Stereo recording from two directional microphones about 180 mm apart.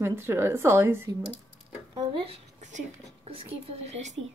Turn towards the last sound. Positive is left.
turn(degrees=-40)  # may be behind; listen again after turning